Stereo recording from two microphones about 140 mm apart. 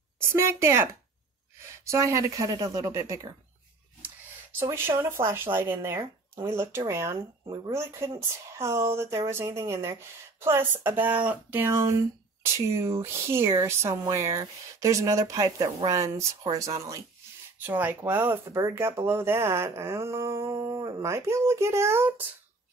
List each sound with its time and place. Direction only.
0.2 s speech: 20° right (ahead or behind)
1.9 s speech: 20° right (ahead or behind)
4.6 s speech: 15° right (ahead or behind)